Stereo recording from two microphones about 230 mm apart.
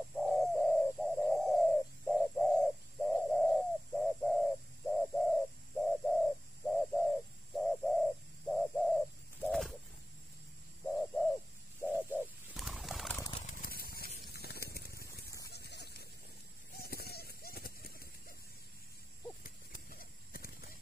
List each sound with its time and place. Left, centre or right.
0.2 s bird: centre
10.9 s bird: centre
11.9 s a sound: centre
12.4 s bird: centre
13.5 s a sound: left
19.4 s horse: left